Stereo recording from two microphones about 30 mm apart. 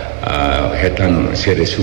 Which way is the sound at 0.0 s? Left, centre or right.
Centre.